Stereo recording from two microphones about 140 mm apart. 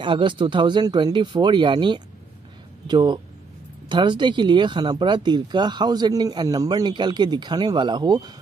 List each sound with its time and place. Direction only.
0.0 s speech: 35° right (ahead or behind)